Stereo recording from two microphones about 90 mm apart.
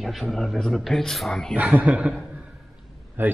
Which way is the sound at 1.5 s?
15° right (ahead or behind).